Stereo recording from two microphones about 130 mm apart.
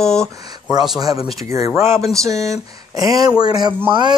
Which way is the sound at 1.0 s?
30° right (ahead or behind).